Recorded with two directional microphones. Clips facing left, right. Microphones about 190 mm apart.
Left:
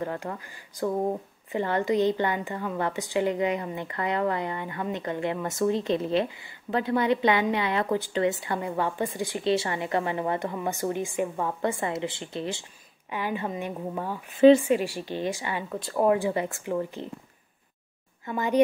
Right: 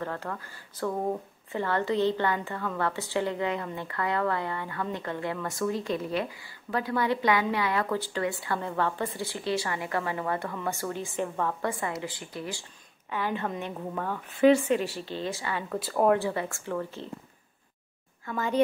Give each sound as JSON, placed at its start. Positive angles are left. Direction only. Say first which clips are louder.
{"t": 0.0, "sound": "a woman's voice", "louder": "left 2 dB", "side_deg": 15}
{"t": 11.6, "sound": "a woman's voice", "louder": "left 3 dB", "side_deg": 25}
{"t": 13.1, "sound": "a woman's voice", "louder": "left 1 dB", "side_deg": 15}
{"t": 15.7, "sound": "speech", "louder": "even", "side_deg": 0}
{"t": 16.2, "sound": "a woman's voice", "louder": "left 3 dB", "side_deg": 15}
{"t": 18.2, "sound": "a woman's voice", "louder": "left 3 dB", "side_deg": 15}